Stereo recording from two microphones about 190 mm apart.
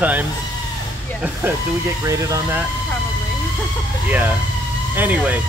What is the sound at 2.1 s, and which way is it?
Speech, 15° right (ahead or behind).